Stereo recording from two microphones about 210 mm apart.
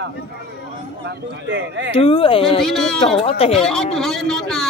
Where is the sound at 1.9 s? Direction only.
25° left (ahead or behind).